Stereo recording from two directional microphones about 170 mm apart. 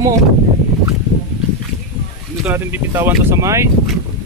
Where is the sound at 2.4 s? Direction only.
10° right (ahead or behind).